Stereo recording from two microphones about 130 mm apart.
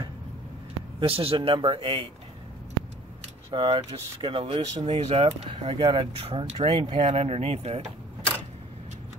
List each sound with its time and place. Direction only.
0.9 s speech: 45° right (ahead or behind)
3.4 s speech: 40° right (ahead or behind)
4.8 s speech: 50° right (ahead or behind)